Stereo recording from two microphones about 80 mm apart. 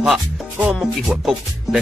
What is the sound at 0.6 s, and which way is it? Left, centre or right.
Speech, centre.